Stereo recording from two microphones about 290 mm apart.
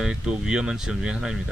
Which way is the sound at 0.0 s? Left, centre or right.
Centre.